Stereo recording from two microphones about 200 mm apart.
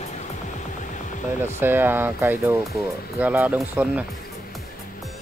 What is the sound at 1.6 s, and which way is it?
Speech, 10° right (ahead or behind).